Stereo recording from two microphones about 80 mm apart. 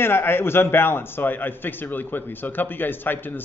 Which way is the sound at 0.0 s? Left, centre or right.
Left.